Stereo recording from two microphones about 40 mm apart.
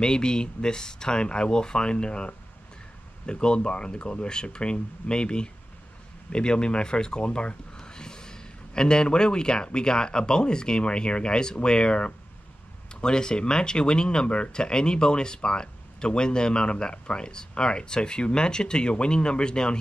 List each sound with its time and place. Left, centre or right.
0.0 s speech: centre